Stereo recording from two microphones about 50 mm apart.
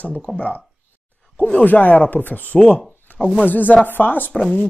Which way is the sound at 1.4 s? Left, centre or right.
Left.